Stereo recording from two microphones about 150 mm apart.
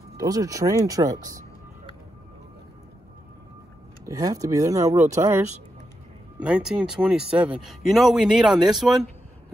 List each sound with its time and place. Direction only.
0.2 s speech: 25° right (ahead or behind)
4.0 s speech: 25° right (ahead or behind)
6.4 s speech: 5° right (ahead or behind)